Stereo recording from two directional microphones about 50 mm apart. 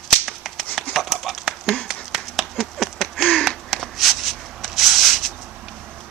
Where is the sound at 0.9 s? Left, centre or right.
Centre.